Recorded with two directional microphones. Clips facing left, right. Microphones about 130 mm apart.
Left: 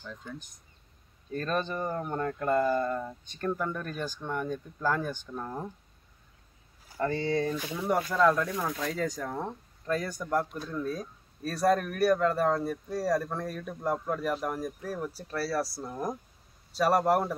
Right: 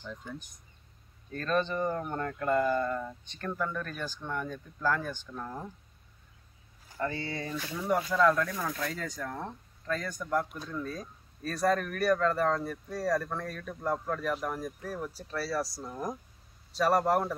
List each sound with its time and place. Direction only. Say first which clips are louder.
0.0 s speech: even; 10° right (ahead or behind)
1.3 s speech: right 1 dB; 10° left (ahead or behind)
7.2 s speech: left 8 dB; 5° right (ahead or behind)
7.5 s speech: left 1 dB; 15° left (ahead or behind)